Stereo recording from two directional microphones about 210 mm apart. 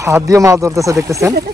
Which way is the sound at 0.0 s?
15° right (ahead or behind).